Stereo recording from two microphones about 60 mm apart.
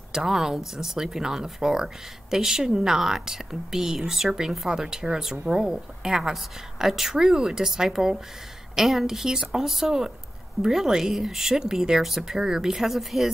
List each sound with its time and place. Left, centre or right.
0.1 s a woman's voice: centre